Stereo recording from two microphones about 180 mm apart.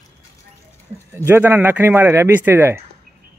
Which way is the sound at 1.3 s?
10° right (ahead or behind).